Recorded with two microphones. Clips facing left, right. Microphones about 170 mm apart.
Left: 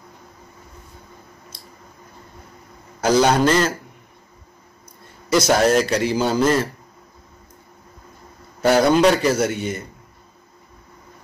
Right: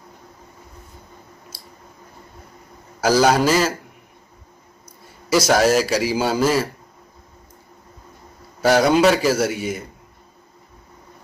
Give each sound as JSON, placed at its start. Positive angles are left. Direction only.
{"t": 3.0, "sound": "a man's voice", "side_deg": -10}
{"t": 5.0, "sound": "a man's voice", "side_deg": -5}
{"t": 8.5, "sound": "a man's voice", "side_deg": -5}